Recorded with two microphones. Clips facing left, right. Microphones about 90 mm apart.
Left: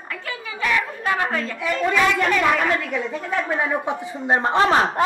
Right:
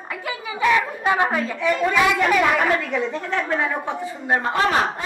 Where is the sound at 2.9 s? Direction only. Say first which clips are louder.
Right 1 dB; 5° left (ahead or behind).